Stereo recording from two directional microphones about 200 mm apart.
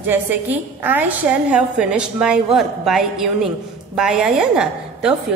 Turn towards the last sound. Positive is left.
turn(degrees=-5)  # may be behind; listen again after turning